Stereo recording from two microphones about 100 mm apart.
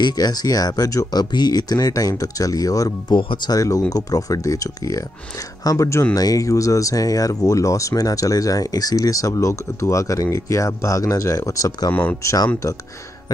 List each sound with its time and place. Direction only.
0.0 s speech: 45° left (ahead or behind)
3.2 s speech: 55° left (ahead or behind)
3.5 s speech: 35° left (ahead or behind)
11.9 s speech: 15° left (ahead or behind)
12.2 s speech: 30° left (ahead or behind)